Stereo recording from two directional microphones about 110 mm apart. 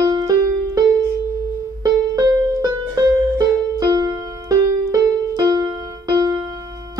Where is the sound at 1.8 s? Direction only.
35° right (ahead or behind).